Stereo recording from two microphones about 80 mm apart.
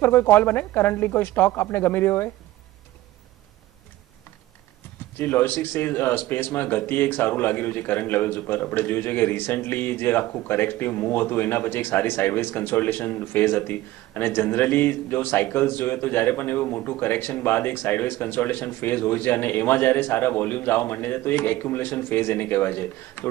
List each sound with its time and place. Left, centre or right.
0.0 s a man's voice: left
5.1 s a man's voice: left